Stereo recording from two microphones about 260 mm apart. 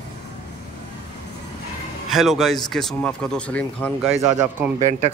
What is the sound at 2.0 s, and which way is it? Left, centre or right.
Speech, centre.